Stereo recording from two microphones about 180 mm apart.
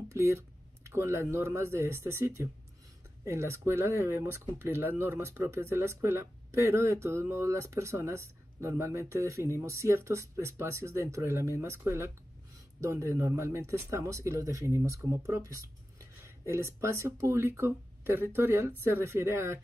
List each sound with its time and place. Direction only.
0.1 s speech: 15° right (ahead or behind)